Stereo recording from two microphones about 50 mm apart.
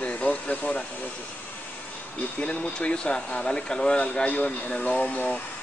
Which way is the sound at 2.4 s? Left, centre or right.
Left.